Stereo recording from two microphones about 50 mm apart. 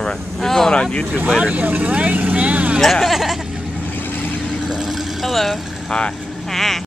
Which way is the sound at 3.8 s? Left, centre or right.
Left.